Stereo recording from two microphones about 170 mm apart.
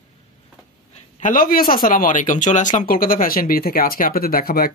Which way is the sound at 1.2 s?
55° left (ahead or behind).